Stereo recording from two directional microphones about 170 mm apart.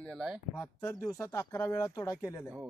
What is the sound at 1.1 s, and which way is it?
Speech, 15° left (ahead or behind).